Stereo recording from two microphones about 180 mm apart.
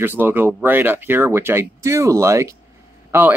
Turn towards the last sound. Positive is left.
turn(degrees=-10)  # may be behind; listen again after turning